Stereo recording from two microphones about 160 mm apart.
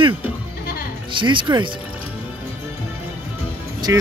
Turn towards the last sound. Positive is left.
turn(degrees=-25)  # may be behind; listen again after turning